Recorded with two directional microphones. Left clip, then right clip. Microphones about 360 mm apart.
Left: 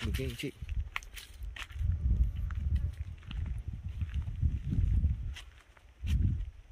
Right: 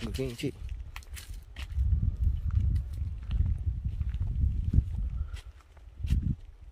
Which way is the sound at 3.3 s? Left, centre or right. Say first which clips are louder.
Right 3 dB; centre.